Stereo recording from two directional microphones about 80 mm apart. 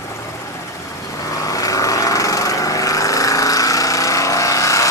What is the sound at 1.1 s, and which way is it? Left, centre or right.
Lawn mower, left.